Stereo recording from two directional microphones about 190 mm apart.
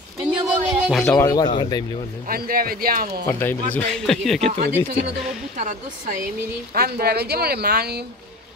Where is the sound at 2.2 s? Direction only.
50° right (ahead or behind).